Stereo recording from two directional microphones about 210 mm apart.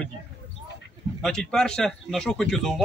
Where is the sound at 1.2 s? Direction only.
5° left (ahead or behind).